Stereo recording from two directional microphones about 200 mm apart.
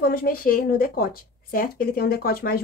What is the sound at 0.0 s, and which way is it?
Speech, 50° left (ahead or behind).